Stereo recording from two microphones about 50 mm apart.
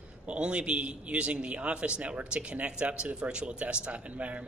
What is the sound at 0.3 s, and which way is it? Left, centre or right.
A man's voice, right.